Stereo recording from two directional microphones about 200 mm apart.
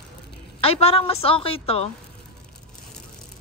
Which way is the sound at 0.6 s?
30° left (ahead or behind).